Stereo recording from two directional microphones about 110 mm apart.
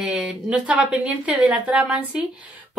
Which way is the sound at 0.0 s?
10° right (ahead or behind).